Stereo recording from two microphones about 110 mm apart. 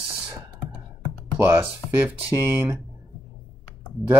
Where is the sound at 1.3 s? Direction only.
15° right (ahead or behind).